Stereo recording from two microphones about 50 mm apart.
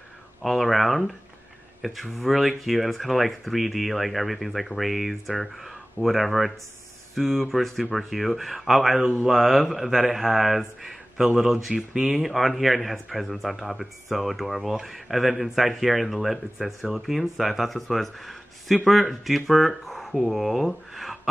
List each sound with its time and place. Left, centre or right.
0.4 s speech: centre
9.0 s speech: centre